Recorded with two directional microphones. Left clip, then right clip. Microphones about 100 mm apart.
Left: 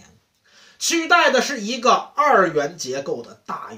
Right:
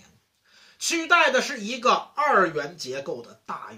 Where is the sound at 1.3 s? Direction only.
20° left (ahead or behind).